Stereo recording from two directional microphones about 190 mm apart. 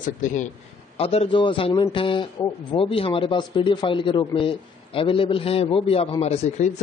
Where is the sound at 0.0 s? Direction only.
40° left (ahead or behind).